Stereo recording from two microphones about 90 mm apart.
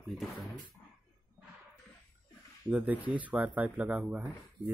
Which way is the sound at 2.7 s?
15° right (ahead or behind).